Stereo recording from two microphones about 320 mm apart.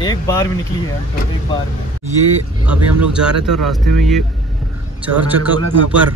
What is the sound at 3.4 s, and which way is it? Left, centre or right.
Speech, right.